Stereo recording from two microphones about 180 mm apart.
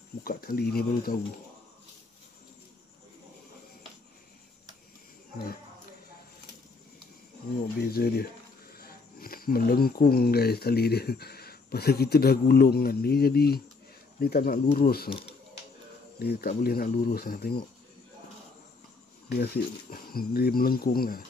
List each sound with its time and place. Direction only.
0.2 s speech: 55° left (ahead or behind)
7.8 s speech: 60° left (ahead or behind)
16.2 s speech: 60° left (ahead or behind)
19.3 s speech: 60° left (ahead or behind)